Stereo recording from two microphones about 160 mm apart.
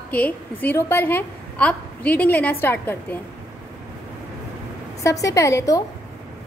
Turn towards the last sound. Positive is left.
turn(degrees=20)  # may be behind; listen again after turning